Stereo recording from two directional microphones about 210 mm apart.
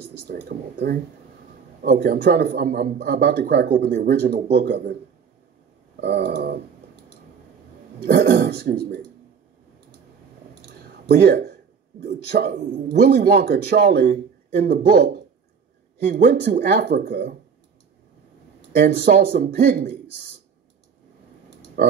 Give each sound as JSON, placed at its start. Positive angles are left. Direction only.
{"t": 0.5, "sound": "speech", "side_deg": -50}
{"t": 5.9, "sound": "speech", "side_deg": -50}
{"t": 8.1, "sound": "speech", "side_deg": -50}
{"t": 11.1, "sound": "speech", "side_deg": -45}
{"t": 16.3, "sound": "speech", "side_deg": -45}
{"t": 18.8, "sound": "speech", "side_deg": -45}
{"t": 21.8, "sound": "speech", "side_deg": -50}